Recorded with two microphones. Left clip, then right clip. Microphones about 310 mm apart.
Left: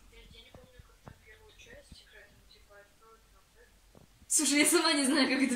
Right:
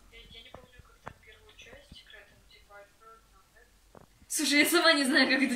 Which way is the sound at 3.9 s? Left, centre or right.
Right.